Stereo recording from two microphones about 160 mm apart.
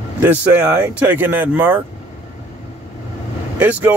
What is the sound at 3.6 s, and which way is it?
Speech, 10° right (ahead or behind).